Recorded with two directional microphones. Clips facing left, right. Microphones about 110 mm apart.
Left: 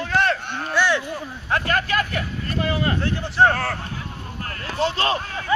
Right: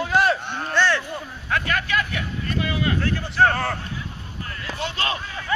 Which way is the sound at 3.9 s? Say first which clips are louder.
Left 1 dB; 50° left (ahead or behind).